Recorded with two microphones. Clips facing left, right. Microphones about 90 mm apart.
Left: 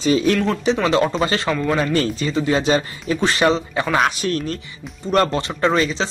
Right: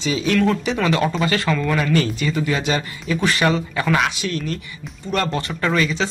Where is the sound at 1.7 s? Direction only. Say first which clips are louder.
Even; 35° left (ahead or behind).